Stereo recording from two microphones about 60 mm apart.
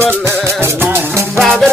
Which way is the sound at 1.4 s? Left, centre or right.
Centre.